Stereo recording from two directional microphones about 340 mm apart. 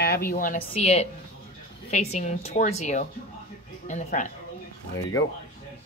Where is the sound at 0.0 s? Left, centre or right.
Left.